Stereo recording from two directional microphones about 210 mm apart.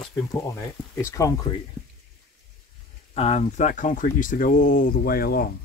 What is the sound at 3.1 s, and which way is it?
Speech, 30° left (ahead or behind).